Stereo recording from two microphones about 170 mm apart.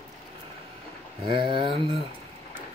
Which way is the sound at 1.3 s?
30° right (ahead or behind).